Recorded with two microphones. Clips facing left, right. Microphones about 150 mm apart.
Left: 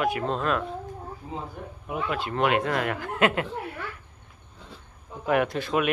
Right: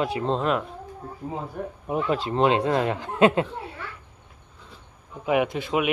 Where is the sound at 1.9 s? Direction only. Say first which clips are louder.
Right 4 dB; 35° right (ahead or behind).